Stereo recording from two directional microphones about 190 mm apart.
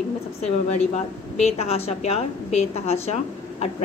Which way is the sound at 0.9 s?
35° left (ahead or behind).